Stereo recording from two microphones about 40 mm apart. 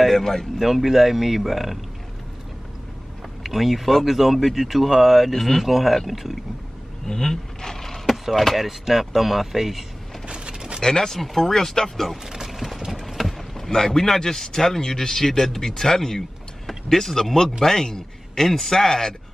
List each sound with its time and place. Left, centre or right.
0.0 s speech: centre
0.6 s speech: centre
3.4 s speech: centre
5.3 s speech: centre
7.1 s a sound: centre
8.3 s speech: centre
10.2 s a sound: right
10.8 s a man's voice: centre
12.3 s mechanisms: centre
13.0 s boat: centre
13.7 s a man's voice: centre